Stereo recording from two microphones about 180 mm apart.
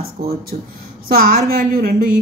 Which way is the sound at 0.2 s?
55° right (ahead or behind).